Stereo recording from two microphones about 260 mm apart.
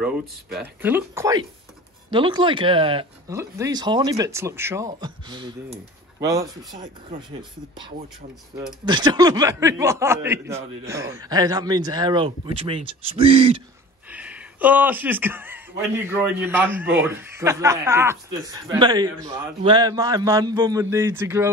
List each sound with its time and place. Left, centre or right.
0.0 s speech: centre
8.8 s speech: centre
14.0 s a sound: centre
16.1 s speech: centre